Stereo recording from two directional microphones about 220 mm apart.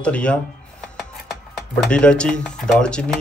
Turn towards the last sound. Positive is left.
turn(degrees=5)  # may be behind; listen again after turning